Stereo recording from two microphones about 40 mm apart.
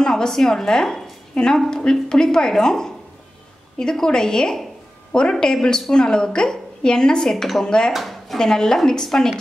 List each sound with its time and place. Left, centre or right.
0.0 s a woman's voice: centre
7.9 s dishes: centre
8.4 s a woman's voice: centre